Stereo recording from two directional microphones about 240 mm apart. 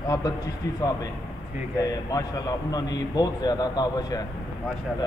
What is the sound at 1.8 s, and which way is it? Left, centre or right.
A man's voice, centre.